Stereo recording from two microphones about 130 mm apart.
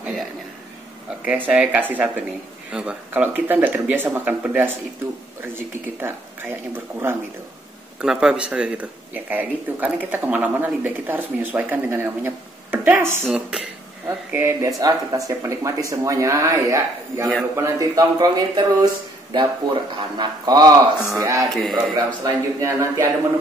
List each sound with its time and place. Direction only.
1.2 s speech: 10° right (ahead or behind)
8.0 s speech: 5° right (ahead or behind)
13.2 s speech: 5° right (ahead or behind)
14.0 s speech: 20° right (ahead or behind)
21.5 s speech: centre (ahead or behind)
21.9 s speech: 25° right (ahead or behind)